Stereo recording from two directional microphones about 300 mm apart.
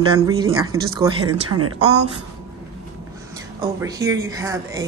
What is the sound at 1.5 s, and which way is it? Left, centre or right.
Speech, right.